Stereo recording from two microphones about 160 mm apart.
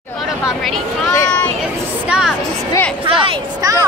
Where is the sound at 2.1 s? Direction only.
5° right (ahead or behind).